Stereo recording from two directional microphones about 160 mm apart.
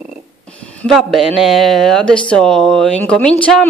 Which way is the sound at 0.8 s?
Centre (ahead or behind).